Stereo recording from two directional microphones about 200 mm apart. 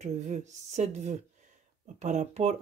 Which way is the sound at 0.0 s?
35° right (ahead or behind).